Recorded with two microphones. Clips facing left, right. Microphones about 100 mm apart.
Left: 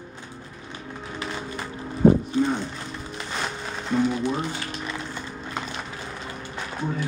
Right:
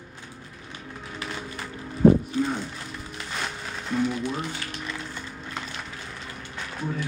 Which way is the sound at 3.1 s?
25° left (ahead or behind).